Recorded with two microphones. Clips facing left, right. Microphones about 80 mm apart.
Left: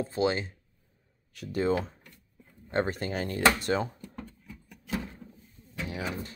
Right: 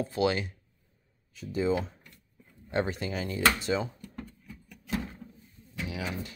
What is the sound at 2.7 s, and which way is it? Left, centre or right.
Speech, left.